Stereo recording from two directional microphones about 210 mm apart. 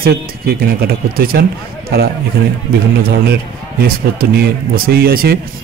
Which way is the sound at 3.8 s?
45° right (ahead or behind).